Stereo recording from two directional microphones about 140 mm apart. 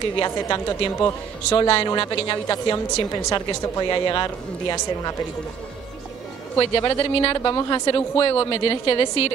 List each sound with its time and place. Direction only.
0.2 s speech: 30° left (ahead or behind)
1.6 s a woman's voice: 40° left (ahead or behind)
1.9 s speech: 30° left (ahead or behind)
6.6 s a woman's voice: 35° left (ahead or behind)